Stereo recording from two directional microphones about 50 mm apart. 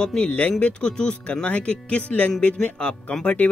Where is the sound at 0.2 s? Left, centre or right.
Left.